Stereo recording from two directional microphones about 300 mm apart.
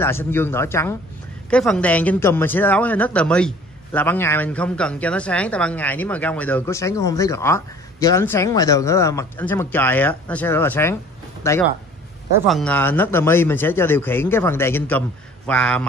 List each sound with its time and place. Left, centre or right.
0.0 s speech: centre